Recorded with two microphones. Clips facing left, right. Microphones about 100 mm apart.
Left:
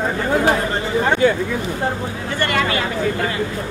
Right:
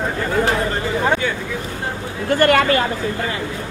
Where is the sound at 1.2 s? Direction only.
40° left (ahead or behind).